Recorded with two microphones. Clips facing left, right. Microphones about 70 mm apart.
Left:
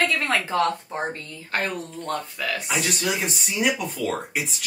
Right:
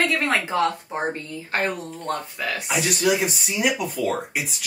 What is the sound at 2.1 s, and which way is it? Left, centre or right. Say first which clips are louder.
Speech: right 1 dB; right.